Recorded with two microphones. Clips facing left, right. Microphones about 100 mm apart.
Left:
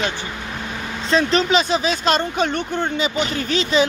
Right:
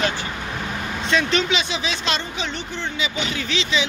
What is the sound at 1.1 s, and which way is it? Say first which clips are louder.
Speech: left 4 dB; 35° left (ahead or behind).